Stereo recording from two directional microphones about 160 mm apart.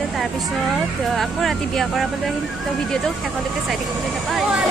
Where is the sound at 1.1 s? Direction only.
Centre (ahead or behind).